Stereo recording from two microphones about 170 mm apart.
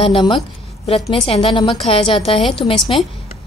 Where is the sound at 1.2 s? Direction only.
30° left (ahead or behind).